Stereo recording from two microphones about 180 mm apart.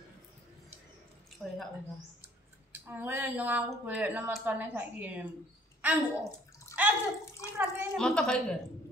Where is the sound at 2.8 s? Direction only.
10° right (ahead or behind).